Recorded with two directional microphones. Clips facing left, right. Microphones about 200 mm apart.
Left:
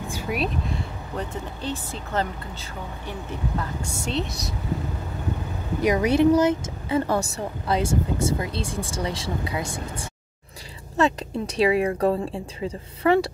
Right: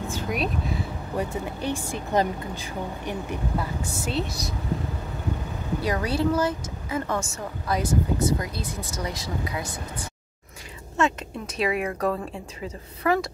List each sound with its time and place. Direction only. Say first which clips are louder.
0.1 s a sound: left 2 dB; 5° left (ahead or behind)
1.1 s speech: right 3 dB; 10° right (ahead or behind)
5.8 s speech: left 7 dB; 15° left (ahead or behind)
7.1 s speech: left 4 dB; 35° left (ahead or behind)